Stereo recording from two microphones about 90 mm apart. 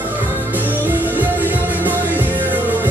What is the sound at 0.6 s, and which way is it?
Music, 20° right (ahead or behind).